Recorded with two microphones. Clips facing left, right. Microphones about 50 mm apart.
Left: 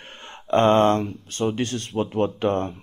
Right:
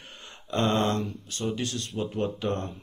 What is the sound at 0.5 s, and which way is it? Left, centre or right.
Speech, left.